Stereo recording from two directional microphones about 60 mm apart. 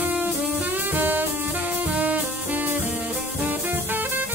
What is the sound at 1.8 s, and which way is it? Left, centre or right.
Music, right.